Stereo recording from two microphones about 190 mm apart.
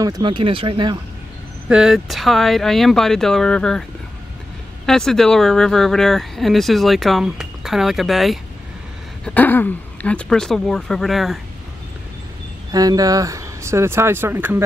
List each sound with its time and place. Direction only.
0.0 s speech: 20° right (ahead or behind)
1.7 s speech: 5° right (ahead or behind)
4.8 s speech: centre (ahead or behind)
12.7 s speech: 20° right (ahead or behind)